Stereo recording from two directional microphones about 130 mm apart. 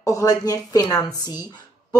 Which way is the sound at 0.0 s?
25° left (ahead or behind).